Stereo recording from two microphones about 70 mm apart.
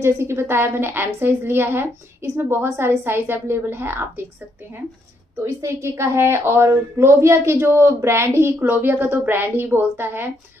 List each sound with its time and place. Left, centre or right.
0.0 s a woman's voice: right
5.4 s a woman's voice: right